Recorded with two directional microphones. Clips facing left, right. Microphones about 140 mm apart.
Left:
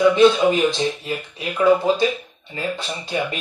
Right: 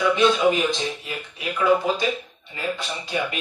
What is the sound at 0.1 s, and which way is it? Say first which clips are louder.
Speech: left 4 dB; 30° left (ahead or behind).